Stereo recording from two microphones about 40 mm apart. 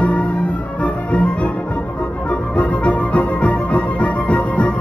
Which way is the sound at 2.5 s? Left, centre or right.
Left.